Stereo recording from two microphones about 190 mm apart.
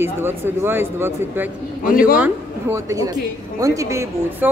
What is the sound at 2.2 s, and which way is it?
Speech, 15° right (ahead or behind).